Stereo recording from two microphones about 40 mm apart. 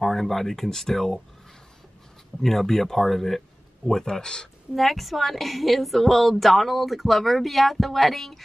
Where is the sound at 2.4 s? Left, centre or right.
Centre.